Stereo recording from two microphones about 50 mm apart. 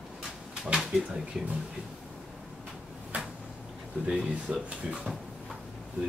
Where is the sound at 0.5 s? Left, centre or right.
Centre.